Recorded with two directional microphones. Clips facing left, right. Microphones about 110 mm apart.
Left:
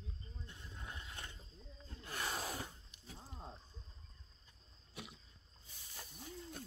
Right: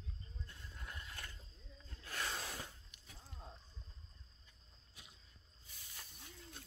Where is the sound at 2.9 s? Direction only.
35° left (ahead or behind).